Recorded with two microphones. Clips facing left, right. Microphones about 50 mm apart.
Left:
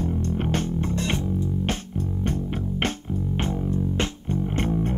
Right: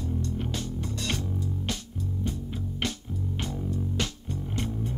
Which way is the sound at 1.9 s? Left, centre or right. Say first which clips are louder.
Left 6 dB; left.